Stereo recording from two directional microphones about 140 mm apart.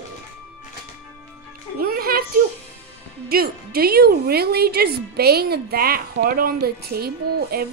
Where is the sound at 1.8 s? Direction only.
90° right.